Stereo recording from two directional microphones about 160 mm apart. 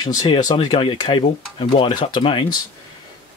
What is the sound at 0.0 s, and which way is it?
Speech, 25° left (ahead or behind).